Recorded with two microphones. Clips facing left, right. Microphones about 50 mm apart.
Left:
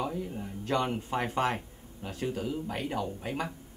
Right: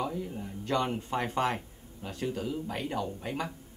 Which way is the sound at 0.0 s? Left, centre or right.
Centre.